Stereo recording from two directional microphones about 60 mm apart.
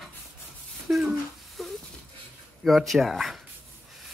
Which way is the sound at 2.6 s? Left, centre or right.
Centre.